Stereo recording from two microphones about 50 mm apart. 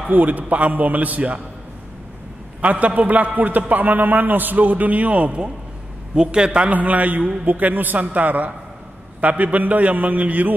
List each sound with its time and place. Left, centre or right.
0.1 s a man's voice: right
2.6 s a man's voice: right
6.7 s a man's voice: right